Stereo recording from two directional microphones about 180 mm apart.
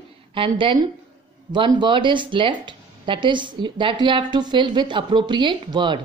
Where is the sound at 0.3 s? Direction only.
30° right (ahead or behind).